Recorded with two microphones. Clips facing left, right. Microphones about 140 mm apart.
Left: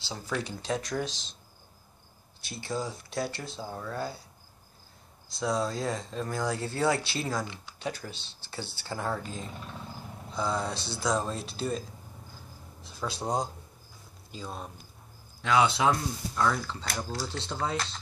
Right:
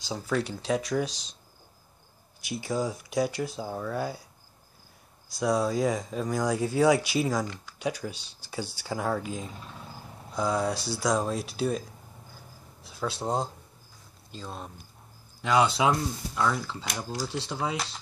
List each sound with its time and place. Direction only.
0.3 s speech: 5° right (ahead or behind)
2.4 s speech: 15° right (ahead or behind)
5.4 s speech: 10° right (ahead or behind)
7.4 s speech: 20° left (ahead or behind)
7.8 s speech: 15° right (ahead or behind)
12.8 s speech: centre (ahead or behind)